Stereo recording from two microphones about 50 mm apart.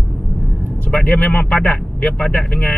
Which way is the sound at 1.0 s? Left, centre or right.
Left.